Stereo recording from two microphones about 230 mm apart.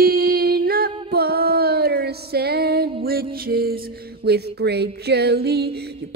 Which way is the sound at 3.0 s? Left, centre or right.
Right.